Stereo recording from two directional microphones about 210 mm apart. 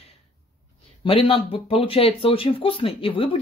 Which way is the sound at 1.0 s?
25° left (ahead or behind).